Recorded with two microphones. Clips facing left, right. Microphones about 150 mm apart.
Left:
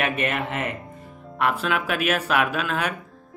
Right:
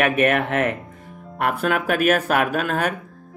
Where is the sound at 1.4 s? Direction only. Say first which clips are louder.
Right 2 dB; 45° right (ahead or behind).